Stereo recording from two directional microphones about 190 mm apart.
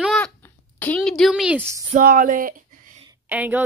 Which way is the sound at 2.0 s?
45° right (ahead or behind).